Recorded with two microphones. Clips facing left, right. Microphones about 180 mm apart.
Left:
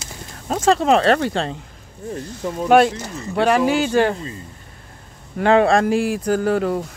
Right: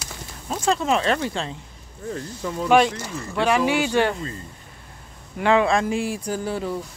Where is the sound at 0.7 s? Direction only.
65° left (ahead or behind).